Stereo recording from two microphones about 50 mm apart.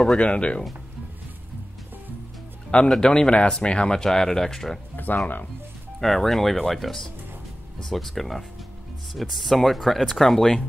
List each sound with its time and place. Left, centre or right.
0.2 s speech: left
2.9 s speech: centre
4.9 s speech: left
5.9 s speech: centre